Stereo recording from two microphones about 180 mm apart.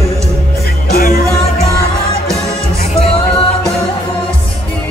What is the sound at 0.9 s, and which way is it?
Music, 55° left (ahead or behind).